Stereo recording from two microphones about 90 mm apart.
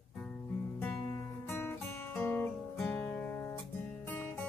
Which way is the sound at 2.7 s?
5° left (ahead or behind).